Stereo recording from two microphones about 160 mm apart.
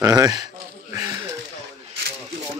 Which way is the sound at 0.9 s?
20° right (ahead or behind).